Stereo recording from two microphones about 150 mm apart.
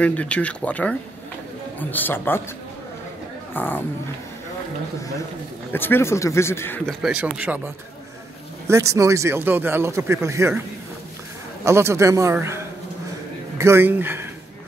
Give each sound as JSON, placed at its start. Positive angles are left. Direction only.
{"t": 0.0, "sound": "a man's voice", "side_deg": 10}
{"t": 3.5, "sound": "a man's voice", "side_deg": 10}
{"t": 5.7, "sound": "a man's voice", "side_deg": 15}
{"t": 6.9, "sound": "speech", "side_deg": -5}
{"t": 11.6, "sound": "speech", "side_deg": -20}